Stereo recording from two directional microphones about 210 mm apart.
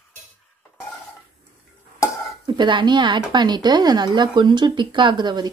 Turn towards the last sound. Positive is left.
turn(degrees=-20)  # may be behind; listen again after turning